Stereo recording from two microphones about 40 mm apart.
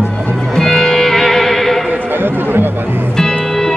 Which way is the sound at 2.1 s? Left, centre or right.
Right.